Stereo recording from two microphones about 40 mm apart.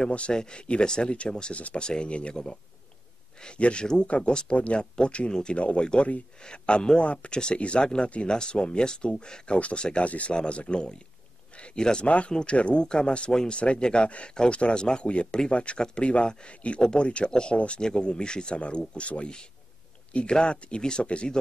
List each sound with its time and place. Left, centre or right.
0.3 s speech: left
3.8 s speech: centre
7.0 s speech: left
7.2 s speech: left
12.5 s speech: left